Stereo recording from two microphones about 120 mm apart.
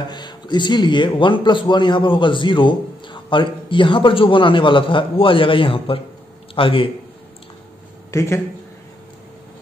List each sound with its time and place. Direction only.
0.1 s a man's voice: 40° left (ahead or behind)
8.1 s a man's voice: 25° left (ahead or behind)